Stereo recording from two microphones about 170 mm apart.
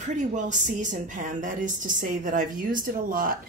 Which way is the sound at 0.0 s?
45° right (ahead or behind).